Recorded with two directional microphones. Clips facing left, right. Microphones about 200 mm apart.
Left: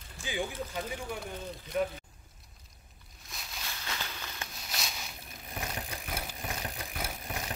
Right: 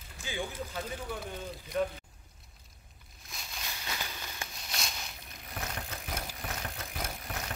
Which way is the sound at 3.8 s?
10° right (ahead or behind).